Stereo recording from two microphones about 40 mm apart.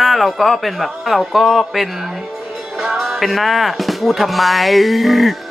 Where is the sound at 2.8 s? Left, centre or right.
Centre.